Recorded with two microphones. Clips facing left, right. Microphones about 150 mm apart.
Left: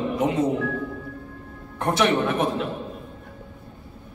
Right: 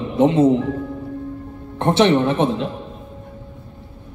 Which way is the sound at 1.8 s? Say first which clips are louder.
Right 6 dB; 25° right (ahead or behind).